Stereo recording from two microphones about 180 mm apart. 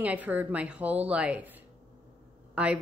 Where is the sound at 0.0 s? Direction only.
10° right (ahead or behind).